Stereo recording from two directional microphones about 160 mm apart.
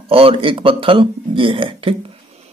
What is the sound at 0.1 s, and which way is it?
Speech, 35° right (ahead or behind).